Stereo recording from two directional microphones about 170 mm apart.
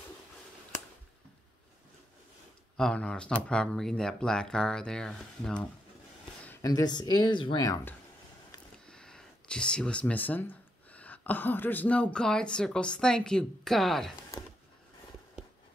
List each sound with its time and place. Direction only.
2.8 s speech: 5° left (ahead or behind)
6.4 s speech: 15° left (ahead or behind)
8.7 s speech: 5° left (ahead or behind)